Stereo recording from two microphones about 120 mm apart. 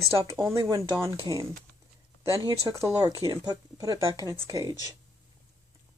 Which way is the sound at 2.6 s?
30° right (ahead or behind).